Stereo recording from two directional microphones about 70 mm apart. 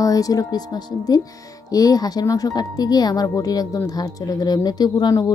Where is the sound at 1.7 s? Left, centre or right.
Left.